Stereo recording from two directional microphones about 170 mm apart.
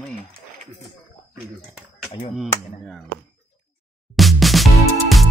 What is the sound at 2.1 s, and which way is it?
Speech, 30° left (ahead or behind).